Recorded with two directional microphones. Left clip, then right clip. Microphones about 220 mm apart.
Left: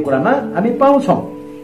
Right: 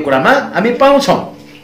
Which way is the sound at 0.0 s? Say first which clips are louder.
Right 4 dB; 15° right (ahead or behind).